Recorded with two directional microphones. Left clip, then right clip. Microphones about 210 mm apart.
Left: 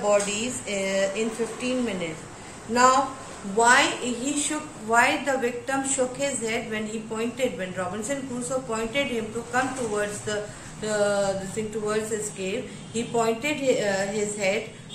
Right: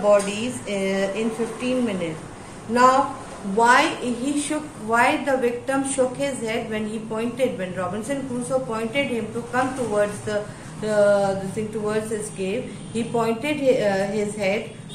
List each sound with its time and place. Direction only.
0.0 s a woman's voice: centre (ahead or behind)